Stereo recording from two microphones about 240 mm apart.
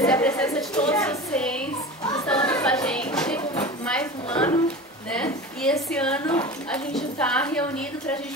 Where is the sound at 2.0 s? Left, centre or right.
Centre.